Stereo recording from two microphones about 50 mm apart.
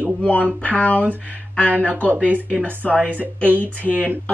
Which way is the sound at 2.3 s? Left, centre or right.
Right.